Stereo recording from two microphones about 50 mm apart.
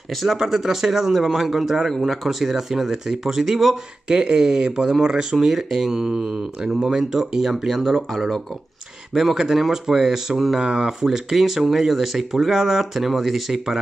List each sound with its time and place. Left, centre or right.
0.1 s speech: centre
0.4 s a man's voice: centre